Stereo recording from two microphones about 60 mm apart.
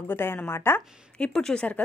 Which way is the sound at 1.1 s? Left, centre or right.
Centre.